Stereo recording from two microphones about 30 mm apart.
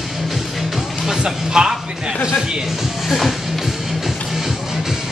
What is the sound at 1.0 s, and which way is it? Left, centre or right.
Music, centre.